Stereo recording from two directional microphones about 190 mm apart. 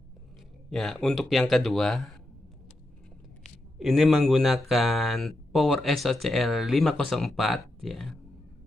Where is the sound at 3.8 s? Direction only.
Centre (ahead or behind).